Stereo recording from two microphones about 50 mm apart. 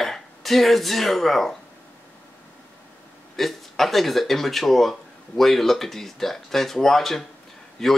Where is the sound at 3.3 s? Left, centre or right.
Centre.